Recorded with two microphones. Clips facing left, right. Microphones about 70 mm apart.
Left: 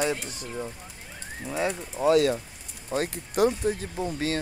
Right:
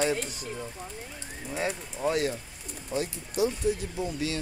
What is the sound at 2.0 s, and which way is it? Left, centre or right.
Speech, left.